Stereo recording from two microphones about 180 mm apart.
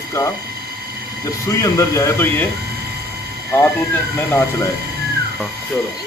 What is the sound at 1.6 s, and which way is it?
Speech, 15° left (ahead or behind).